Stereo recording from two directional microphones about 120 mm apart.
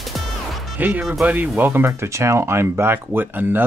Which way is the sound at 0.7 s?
15° right (ahead or behind).